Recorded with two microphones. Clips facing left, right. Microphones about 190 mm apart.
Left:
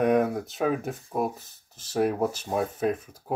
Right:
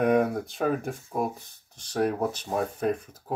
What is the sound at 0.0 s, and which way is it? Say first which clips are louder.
Speech: even; centre (ahead or behind).